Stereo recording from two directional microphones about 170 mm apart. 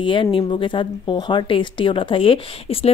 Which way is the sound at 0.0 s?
30° left (ahead or behind).